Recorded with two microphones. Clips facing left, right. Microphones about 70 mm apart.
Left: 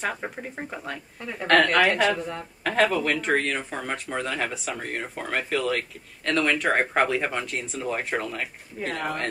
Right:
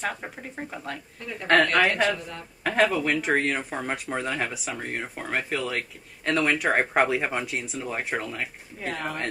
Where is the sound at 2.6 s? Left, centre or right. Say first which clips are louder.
Even; centre.